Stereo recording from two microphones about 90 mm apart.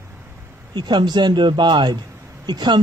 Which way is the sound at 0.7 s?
55° right (ahead or behind).